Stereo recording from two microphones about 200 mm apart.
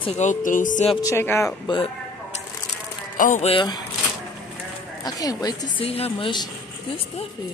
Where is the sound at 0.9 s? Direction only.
15° left (ahead or behind).